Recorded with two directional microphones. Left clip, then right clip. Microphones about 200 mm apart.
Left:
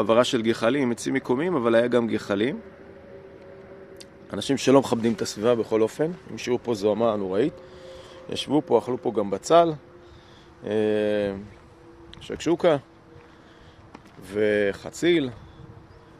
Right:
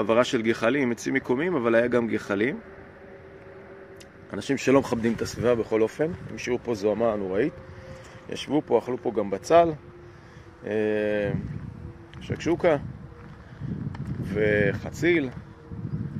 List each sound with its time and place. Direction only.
0.0 s speech: 15° left (ahead or behind)
4.6 s speech: 10° left (ahead or behind)
5.6 s a man's voice: 20° left (ahead or behind)
6.6 s a man's voice: 25° left (ahead or behind)
8.8 s speech: 15° left (ahead or behind)
10.6 s a man's voice: 25° left (ahead or behind)
12.3 s speech: 15° left (ahead or behind)
14.3 s a man's voice: 15° left (ahead or behind)